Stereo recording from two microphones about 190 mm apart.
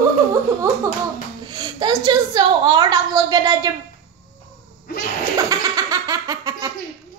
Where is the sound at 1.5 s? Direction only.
20° right (ahead or behind).